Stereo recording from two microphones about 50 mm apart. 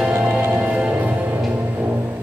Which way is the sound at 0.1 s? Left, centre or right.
Right.